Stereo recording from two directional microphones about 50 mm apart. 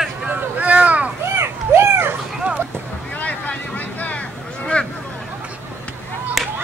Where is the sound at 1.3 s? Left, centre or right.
Right.